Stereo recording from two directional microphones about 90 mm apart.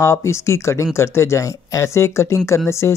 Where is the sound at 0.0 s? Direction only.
30° left (ahead or behind).